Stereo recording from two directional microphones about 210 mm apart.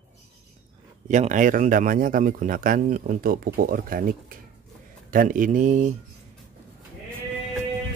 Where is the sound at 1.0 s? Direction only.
35° right (ahead or behind).